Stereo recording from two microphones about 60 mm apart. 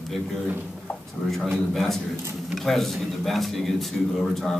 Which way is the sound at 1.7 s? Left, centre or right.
Centre.